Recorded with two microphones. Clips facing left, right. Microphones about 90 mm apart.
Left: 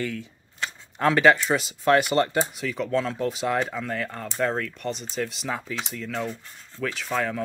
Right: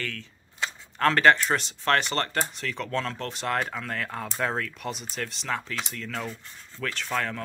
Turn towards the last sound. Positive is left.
turn(degrees=5)  # may be behind; listen again after turning